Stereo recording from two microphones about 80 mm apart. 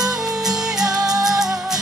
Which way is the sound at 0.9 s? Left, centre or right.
Right.